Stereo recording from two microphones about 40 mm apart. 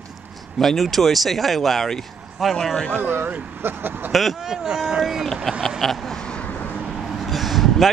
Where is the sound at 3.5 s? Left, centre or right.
Right.